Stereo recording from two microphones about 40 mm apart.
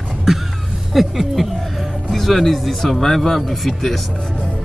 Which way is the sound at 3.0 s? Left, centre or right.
Centre.